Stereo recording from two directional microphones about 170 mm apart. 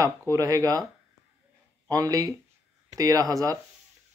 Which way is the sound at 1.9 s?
20° right (ahead or behind).